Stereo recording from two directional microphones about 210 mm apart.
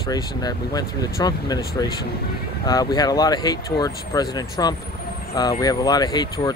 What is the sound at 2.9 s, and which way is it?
Speech, 20° left (ahead or behind).